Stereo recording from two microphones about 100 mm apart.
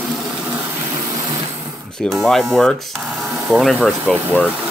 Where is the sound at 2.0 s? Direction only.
Centre (ahead or behind).